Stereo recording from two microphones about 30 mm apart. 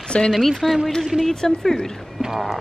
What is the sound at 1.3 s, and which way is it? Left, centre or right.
Speech, centre.